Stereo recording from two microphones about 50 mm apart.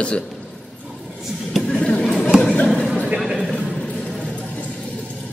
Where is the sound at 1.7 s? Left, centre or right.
Left.